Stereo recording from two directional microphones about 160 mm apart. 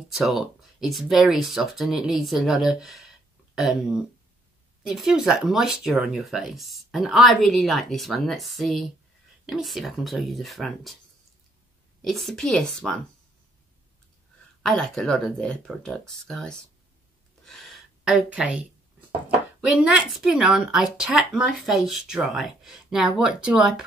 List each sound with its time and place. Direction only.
0.1 s a woman's voice: centre (ahead or behind)
12.0 s a woman's voice: centre (ahead or behind)
14.6 s a woman's voice: 5° left (ahead or behind)
17.5 s a sound: centre (ahead or behind)
19.6 s a woman's voice: 5° right (ahead or behind)